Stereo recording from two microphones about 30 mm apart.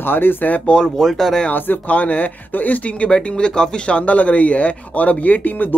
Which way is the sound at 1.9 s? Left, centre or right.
Left.